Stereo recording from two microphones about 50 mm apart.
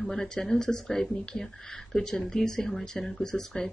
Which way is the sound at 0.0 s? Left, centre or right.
Centre.